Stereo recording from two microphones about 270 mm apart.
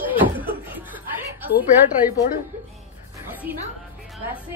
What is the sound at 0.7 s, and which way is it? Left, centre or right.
Snicker, centre.